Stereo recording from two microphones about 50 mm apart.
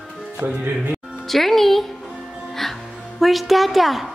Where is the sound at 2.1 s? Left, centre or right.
Centre.